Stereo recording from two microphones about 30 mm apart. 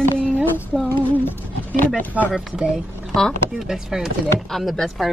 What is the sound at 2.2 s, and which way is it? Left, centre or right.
Speech, right.